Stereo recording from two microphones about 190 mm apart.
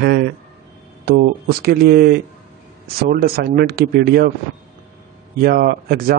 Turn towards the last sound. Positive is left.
turn(degrees=-50)  # may be behind; listen again after turning